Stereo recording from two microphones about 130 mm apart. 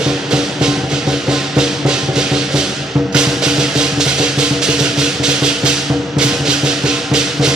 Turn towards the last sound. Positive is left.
turn(degrees=-5)  # may be behind; listen again after turning